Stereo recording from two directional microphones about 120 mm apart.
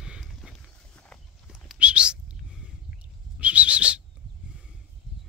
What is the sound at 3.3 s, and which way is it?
Bird, 10° right (ahead or behind).